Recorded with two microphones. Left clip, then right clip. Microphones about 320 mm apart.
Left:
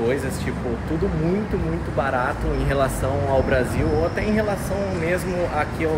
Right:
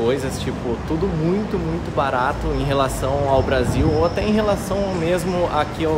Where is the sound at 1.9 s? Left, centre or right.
Centre.